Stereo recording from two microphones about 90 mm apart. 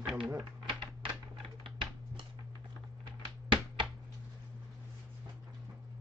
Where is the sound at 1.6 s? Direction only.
65° right (ahead or behind).